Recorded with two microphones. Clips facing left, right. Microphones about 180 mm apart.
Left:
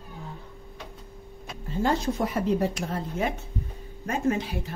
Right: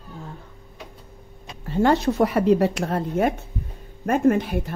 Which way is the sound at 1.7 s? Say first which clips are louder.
Right 6 dB; 70° right (ahead or behind).